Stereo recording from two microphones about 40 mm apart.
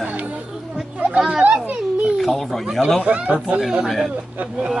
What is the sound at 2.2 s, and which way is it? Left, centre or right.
Speech, centre.